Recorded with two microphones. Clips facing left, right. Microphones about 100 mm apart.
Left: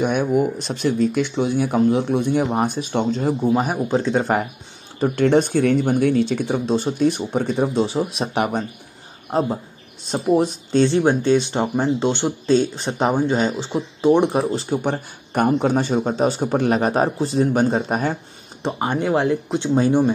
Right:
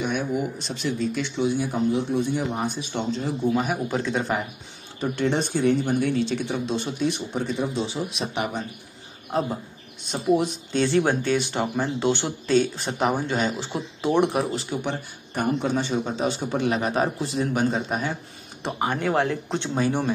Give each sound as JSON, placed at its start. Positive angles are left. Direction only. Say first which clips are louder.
{"t": 0.0, "sound": "speech", "louder": "left 7 dB", "side_deg": 50}
{"t": 3.6, "sound": "speech", "louder": "left 5 dB", "side_deg": 30}
{"t": 9.3, "sound": "speech", "louder": "left 5 dB", "side_deg": 35}
{"t": 14.7, "sound": "speech", "louder": "left 6 dB", "side_deg": 40}
{"t": 15.3, "sound": "speech", "louder": "left 6 dB", "side_deg": 55}
{"t": 18.6, "sound": "speech", "louder": "left 4 dB", "side_deg": 25}
{"t": 19.5, "sound": "speech", "louder": "left 7 dB", "side_deg": 10}